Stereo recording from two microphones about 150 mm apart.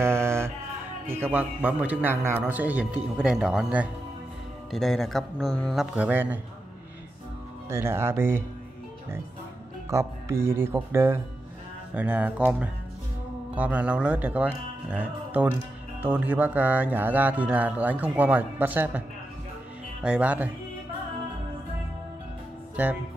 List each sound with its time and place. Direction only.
0.0 s music: 15° right (ahead or behind)
1.0 s a man's voice: 15° right (ahead or behind); by 5.9 s 5° left (ahead or behind)
5.9 s speech: 10° right (ahead or behind)
7.7 s speech: 15° right (ahead or behind)
9.8 s speech: 20° right (ahead or behind)
22.8 s speech: 10° right (ahead or behind)